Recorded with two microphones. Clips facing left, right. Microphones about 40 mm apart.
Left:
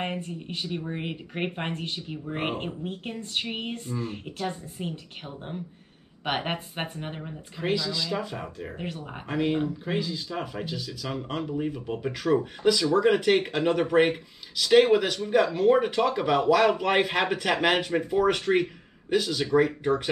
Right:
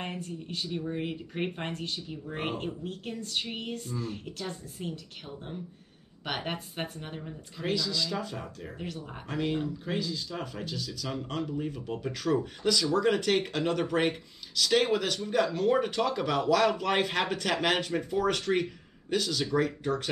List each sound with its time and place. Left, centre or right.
0.0 s speech: left
6.2 s speech: left